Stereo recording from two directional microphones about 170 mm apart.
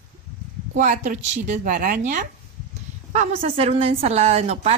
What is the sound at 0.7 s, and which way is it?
Speech, 45° right (ahead or behind).